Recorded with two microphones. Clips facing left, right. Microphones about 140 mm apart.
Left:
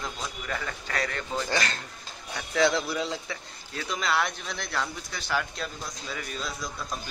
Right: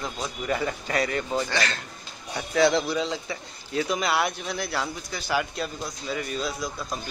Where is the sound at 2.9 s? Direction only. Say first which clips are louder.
Right 3 dB; 5° left (ahead or behind).